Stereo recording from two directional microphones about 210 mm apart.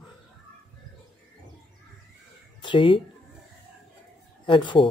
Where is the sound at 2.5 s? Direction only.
25° left (ahead or behind).